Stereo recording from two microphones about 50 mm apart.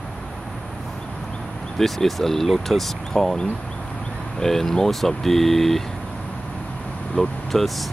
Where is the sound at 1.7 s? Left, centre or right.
Centre.